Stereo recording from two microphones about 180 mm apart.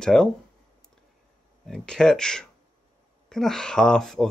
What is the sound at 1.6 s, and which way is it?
Speech, 5° left (ahead or behind).